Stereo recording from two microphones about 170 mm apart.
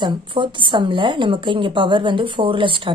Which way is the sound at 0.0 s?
30° right (ahead or behind).